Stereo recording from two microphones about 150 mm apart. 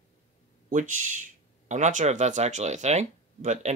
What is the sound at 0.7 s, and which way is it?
Speech, 60° right (ahead or behind).